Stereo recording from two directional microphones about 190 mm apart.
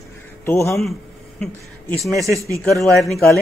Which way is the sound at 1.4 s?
5° left (ahead or behind).